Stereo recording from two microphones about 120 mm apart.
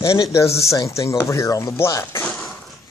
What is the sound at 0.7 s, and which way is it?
Speech, 25° left (ahead or behind).